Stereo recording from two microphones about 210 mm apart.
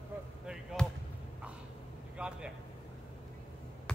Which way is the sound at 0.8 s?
5° left (ahead or behind).